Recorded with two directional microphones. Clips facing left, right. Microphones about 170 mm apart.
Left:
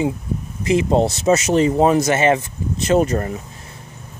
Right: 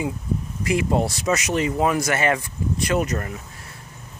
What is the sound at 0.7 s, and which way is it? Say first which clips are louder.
Speech: left 5 dB; 25° left (ahead or behind).